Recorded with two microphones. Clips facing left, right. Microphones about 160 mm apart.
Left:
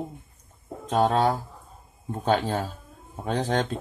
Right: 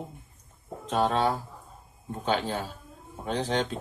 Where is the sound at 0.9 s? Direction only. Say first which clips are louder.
Left 3 dB; 40° left (ahead or behind).